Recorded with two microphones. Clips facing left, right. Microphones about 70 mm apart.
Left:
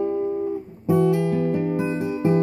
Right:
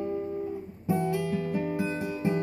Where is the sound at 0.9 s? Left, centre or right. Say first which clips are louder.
Left 9 dB; left.